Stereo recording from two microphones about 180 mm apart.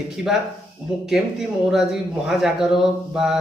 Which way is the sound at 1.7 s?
Centre (ahead or behind).